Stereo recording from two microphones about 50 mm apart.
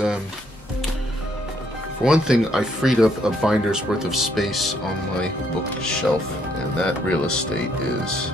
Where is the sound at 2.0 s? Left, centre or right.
Centre.